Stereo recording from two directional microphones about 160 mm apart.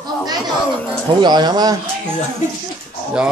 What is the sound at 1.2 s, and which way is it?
Speech, 25° right (ahead or behind).